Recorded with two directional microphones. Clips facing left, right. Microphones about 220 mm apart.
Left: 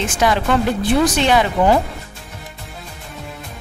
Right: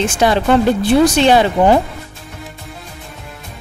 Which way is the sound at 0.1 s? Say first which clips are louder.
Right 2 dB; 30° right (ahead or behind).